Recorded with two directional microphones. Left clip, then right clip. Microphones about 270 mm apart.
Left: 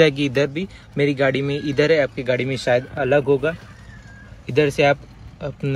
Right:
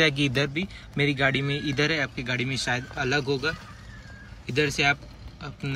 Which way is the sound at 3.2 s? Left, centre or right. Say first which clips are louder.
Left 8 dB; left.